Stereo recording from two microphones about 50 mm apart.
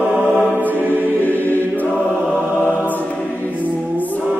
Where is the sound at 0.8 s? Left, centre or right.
Left.